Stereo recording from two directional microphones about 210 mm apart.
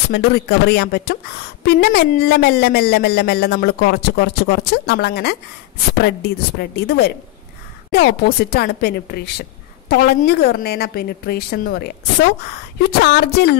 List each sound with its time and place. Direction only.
0.1 s speech: 50° left (ahead or behind)